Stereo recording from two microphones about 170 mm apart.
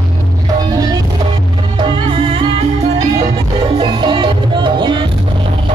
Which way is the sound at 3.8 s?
30° right (ahead or behind).